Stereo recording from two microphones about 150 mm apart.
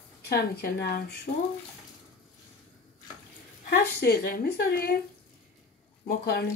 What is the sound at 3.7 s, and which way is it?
Speech, 90° left.